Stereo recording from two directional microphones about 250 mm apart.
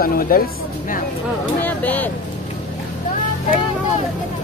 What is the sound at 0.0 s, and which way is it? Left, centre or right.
Speech, left.